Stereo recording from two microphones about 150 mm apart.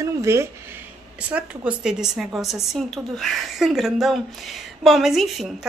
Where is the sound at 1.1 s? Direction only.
10° right (ahead or behind).